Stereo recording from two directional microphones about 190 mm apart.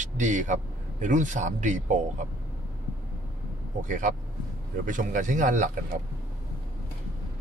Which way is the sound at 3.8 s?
40° right (ahead or behind).